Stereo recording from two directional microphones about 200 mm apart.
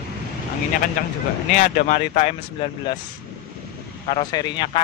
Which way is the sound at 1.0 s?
40° left (ahead or behind).